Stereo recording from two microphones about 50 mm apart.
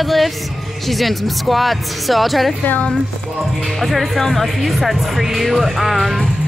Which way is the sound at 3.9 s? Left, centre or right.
Centre.